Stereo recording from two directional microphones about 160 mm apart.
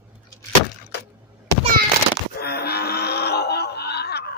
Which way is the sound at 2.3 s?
75° left (ahead or behind).